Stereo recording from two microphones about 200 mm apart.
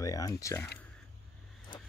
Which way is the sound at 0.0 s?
15° left (ahead or behind).